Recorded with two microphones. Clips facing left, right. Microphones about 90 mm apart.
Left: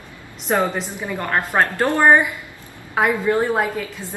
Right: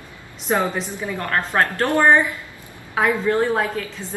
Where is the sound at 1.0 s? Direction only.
15° left (ahead or behind).